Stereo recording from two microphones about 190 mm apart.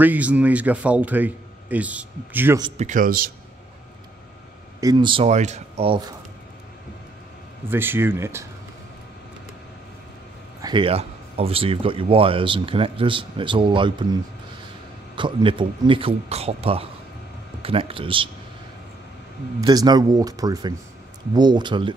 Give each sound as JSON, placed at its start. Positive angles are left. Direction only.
{"t": 0.0, "sound": "speech", "side_deg": -10}
{"t": 2.8, "sound": "speech", "side_deg": -45}
{"t": 4.7, "sound": "speech", "side_deg": -20}
{"t": 7.7, "sound": "speech", "side_deg": -10}
{"t": 10.6, "sound": "speech", "side_deg": -25}
{"t": 15.1, "sound": "speech", "side_deg": -25}
{"t": 19.6, "sound": "speech", "side_deg": -20}